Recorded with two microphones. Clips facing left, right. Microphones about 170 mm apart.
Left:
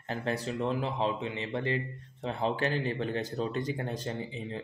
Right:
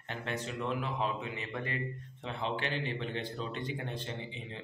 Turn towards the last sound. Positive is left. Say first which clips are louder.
# left 6 dB
turn(degrees=40)  # may be behind; listen again after turning